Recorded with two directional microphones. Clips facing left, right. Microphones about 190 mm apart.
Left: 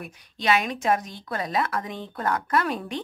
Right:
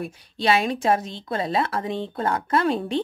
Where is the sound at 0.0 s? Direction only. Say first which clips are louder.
Right 4 dB; 30° right (ahead or behind).